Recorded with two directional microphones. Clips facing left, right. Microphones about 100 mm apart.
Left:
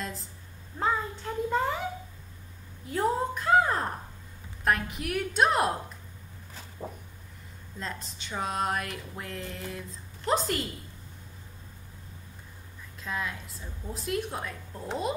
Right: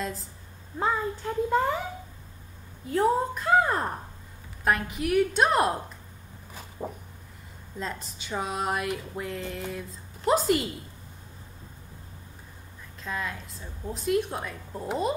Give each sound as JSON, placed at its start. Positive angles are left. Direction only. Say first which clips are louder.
{"t": 0.0, "sound": "a sound", "louder": "right 4 dB", "side_deg": 0}
{"t": 0.7, "sound": "speech", "louder": "right 2 dB", "side_deg": -5}
{"t": 2.9, "sound": "speech", "louder": "right 4 dB", "side_deg": 0}
{"t": 6.8, "sound": "a sound", "louder": "right 4 dB", "side_deg": -20}
{"t": 7.8, "sound": "speech", "louder": "right 3 dB", "side_deg": -5}
{"t": 13.0, "sound": "speech", "louder": "right 1 dB", "side_deg": 0}